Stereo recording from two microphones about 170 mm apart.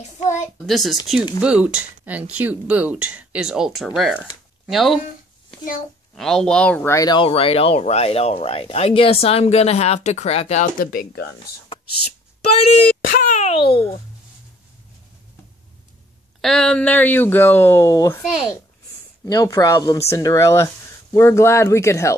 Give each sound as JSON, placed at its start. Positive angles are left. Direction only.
{"t": 0.2, "sound": "a child's voice", "side_deg": 45}
{"t": 0.7, "sound": "speech", "side_deg": 0}
{"t": 6.1, "sound": "speech", "side_deg": 0}
{"t": 13.0, "sound": "a sound", "side_deg": 55}
{"t": 13.4, "sound": "a child's voice", "side_deg": 35}
{"t": 16.3, "sound": "speech", "side_deg": 5}
{"t": 19.2, "sound": "speech", "side_deg": 20}